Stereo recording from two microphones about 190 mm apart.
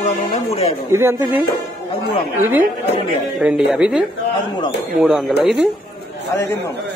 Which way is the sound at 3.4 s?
Centre (ahead or behind).